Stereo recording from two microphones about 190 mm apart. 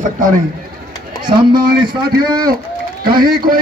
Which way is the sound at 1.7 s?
50° right (ahead or behind).